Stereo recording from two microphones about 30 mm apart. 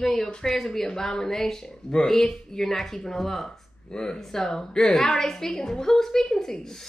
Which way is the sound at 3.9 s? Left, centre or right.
Left.